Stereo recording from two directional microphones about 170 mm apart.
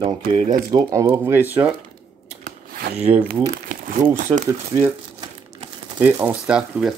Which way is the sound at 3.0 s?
10° right (ahead or behind).